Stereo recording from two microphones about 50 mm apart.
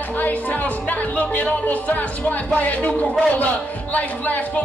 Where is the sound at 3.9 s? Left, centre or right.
Left.